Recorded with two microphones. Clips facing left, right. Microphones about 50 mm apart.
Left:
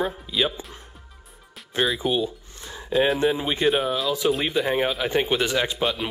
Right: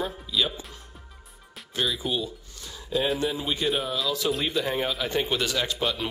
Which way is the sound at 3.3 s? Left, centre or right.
Left.